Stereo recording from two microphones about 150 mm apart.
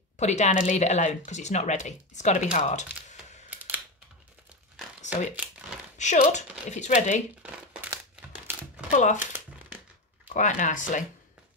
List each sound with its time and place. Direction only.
0.2 s speech: 50° left (ahead or behind)
3.4 s a sound: 15° right (ahead or behind)
5.3 s crumpling: 10° right (ahead or behind)
5.9 s speech: 50° left (ahead or behind)
7.4 s a sound: 10° right (ahead or behind)
8.9 s speech: 55° left (ahead or behind)
10.3 s speech: 55° left (ahead or behind)